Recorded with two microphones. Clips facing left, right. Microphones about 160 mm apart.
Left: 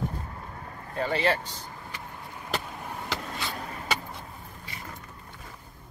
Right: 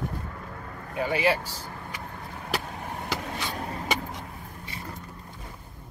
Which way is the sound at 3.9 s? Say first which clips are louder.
Right 2 dB; 15° right (ahead or behind).